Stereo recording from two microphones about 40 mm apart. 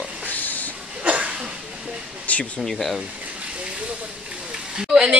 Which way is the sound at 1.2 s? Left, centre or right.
Right.